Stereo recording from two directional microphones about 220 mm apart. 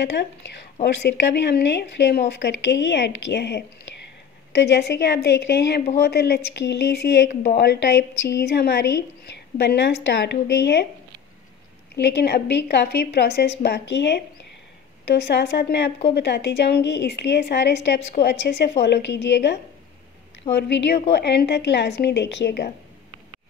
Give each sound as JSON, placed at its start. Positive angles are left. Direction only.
{"t": 0.0, "sound": "speech", "side_deg": 50}
{"t": 11.9, "sound": "speech", "side_deg": 50}